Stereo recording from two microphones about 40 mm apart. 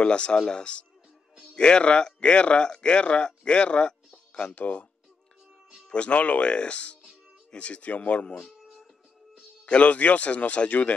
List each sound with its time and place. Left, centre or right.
0.0 s speech: left
5.9 s speech: left
8.4 s a sound: centre
9.7 s speech: left